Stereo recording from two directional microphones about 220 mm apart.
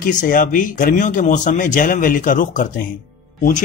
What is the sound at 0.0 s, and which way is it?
Speech, 35° left (ahead or behind).